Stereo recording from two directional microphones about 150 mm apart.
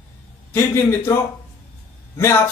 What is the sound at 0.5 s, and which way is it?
Speech, 15° left (ahead or behind).